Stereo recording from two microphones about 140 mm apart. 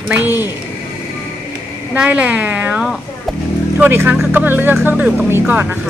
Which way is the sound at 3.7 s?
15° right (ahead or behind).